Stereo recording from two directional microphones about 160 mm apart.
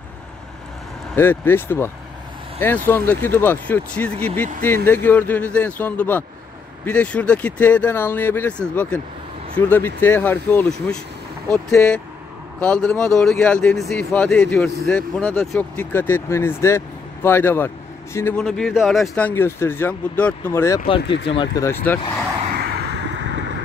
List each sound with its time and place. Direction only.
1.1 s speech: 15° left (ahead or behind)
21.0 s speech: 90° left
21.4 s speech: 20° left (ahead or behind)
22.6 s a sound: 90° right